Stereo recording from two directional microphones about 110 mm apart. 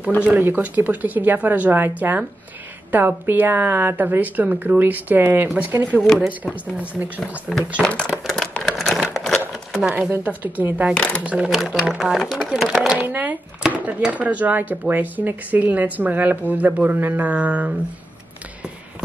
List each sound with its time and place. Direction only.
0.3 s speech: 15° right (ahead or behind)
7.8 s speech: 10° left (ahead or behind)
8.3 s a sound: 5° left (ahead or behind)
9.8 s speech: 10° right (ahead or behind)
11.0 s speech: 10° left (ahead or behind)
11.2 s speech: 5° right (ahead or behind)
13.0 s speech: 15° right (ahead or behind)